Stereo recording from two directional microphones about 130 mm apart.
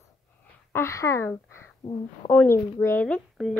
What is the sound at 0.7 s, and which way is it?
A woman's voice, 20° left (ahead or behind).